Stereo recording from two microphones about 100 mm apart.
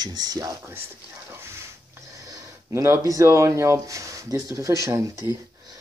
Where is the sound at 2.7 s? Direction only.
30° right (ahead or behind).